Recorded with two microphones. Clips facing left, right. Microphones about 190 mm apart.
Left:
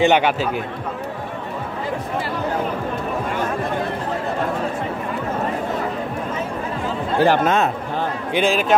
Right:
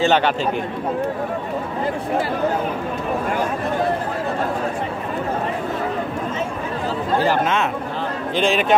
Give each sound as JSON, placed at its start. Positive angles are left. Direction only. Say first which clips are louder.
{"t": 0.0, "sound": "speech", "louder": "left 1 dB", "side_deg": 15}
{"t": 7.2, "sound": "speech", "louder": "left 6 dB", "side_deg": 40}
{"t": 8.4, "sound": "a man's voice", "louder": "even", "side_deg": 0}